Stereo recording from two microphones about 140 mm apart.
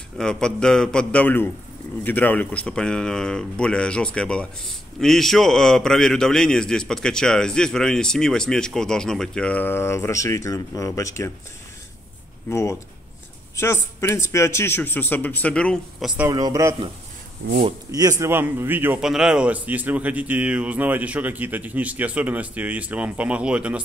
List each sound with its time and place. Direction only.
0.2 s a man's voice: 5° left (ahead or behind); by 11.3 s 20° left (ahead or behind)
12.4 s a man's voice: 20° left (ahead or behind); by 16.2 s centre (ahead or behind)
16.3 s a man's voice: 25° right (ahead or behind)
17.9 s a man's voice: 25° right (ahead or behind)
18.3 s a man's voice: 15° right (ahead or behind)
19.0 s a man's voice: 5° right (ahead or behind)